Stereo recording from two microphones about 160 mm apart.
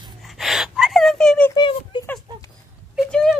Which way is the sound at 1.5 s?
30° left (ahead or behind).